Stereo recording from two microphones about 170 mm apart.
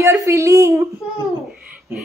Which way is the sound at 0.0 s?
15° right (ahead or behind).